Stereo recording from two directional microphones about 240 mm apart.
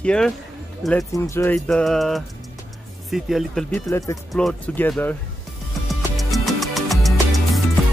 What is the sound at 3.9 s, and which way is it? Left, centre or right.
Speech, centre.